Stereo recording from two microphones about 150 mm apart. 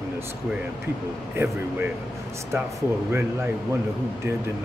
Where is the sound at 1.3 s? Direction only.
15° right (ahead or behind).